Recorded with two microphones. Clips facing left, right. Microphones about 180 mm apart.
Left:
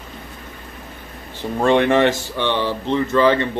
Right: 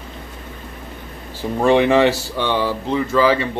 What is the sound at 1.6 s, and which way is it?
Speech, 10° right (ahead or behind).